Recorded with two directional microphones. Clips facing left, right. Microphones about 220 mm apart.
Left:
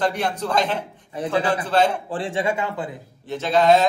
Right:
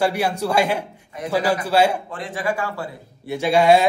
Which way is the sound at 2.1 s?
30° left (ahead or behind).